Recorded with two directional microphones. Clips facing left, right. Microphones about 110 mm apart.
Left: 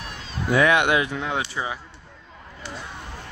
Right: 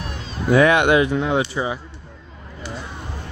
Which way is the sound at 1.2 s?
15° right (ahead or behind).